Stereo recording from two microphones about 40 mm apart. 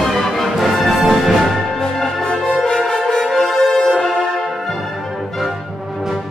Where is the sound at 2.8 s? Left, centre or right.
Centre.